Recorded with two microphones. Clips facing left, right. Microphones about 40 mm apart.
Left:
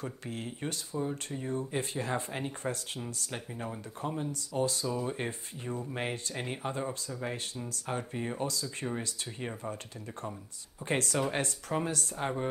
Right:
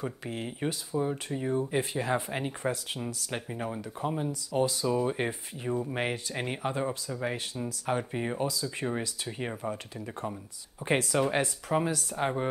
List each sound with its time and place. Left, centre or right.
0.0 s speech: right
4.5 s speech: right; by 9.8 s centre
10.9 s speech: centre